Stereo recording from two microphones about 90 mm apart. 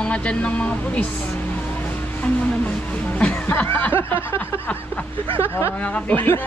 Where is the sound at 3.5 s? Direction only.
20° left (ahead or behind).